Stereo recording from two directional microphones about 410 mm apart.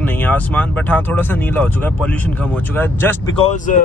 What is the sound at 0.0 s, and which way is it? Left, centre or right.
Speech, centre.